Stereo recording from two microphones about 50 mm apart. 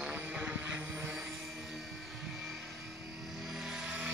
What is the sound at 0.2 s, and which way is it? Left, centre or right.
Vehicle, right.